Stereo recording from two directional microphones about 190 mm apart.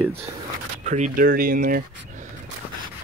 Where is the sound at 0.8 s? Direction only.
40° right (ahead or behind).